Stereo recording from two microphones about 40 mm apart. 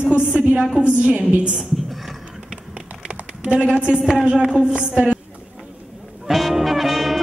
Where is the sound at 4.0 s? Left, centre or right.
Centre.